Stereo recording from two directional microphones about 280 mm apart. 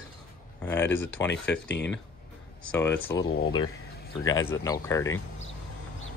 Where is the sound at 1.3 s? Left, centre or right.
Left.